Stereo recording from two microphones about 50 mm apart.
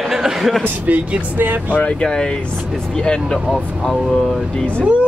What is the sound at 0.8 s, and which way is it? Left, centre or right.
Speech, right.